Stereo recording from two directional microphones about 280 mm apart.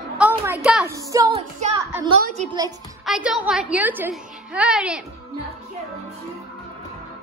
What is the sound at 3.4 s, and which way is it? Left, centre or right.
Child singing, centre.